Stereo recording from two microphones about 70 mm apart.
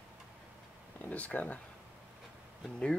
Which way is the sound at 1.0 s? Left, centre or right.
Left.